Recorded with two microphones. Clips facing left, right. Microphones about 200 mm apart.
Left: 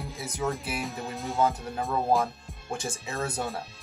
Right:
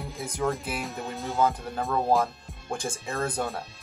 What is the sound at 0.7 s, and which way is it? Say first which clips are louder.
Speech: even; centre (ahead or behind).